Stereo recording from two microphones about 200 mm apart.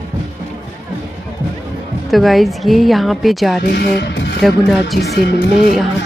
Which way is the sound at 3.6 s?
55° left (ahead or behind).